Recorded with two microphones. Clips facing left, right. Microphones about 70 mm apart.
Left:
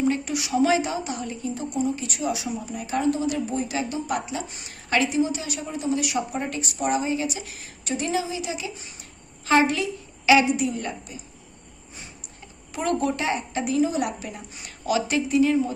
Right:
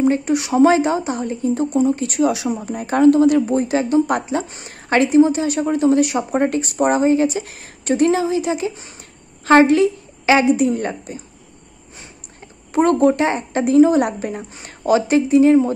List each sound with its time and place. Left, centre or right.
0.0 s a woman's voice: right
2.2 s speech: right
2.5 s a woman's voice: right
5.7 s speech: right
5.9 s a woman's voice: right
12.7 s a woman's voice: right